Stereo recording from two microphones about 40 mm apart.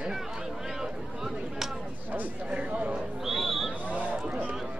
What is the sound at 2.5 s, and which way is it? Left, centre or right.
Speech, right.